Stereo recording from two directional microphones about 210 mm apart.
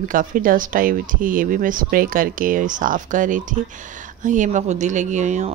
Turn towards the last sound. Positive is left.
turn(degrees=-35)  # may be behind; listen again after turning